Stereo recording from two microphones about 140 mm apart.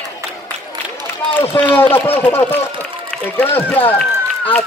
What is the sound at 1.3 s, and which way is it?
A man's voice, 10° left (ahead or behind).